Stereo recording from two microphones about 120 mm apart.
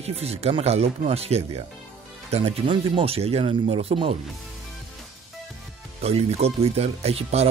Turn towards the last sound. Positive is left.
turn(degrees=-60)  # may be behind; listen again after turning